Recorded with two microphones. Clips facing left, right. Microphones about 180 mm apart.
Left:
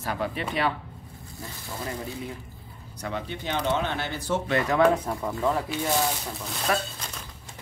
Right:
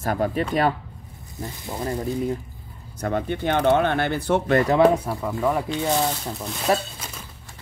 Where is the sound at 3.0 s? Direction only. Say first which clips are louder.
Right 8 dB; 50° right (ahead or behind).